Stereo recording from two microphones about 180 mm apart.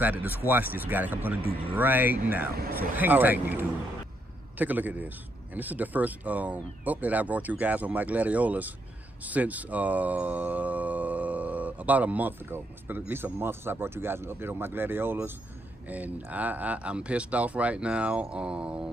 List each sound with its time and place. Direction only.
0.0 s speech: 10° right (ahead or behind)